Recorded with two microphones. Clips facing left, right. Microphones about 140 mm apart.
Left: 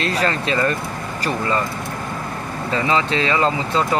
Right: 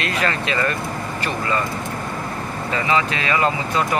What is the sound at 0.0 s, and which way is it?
Speech, 35° left (ahead or behind).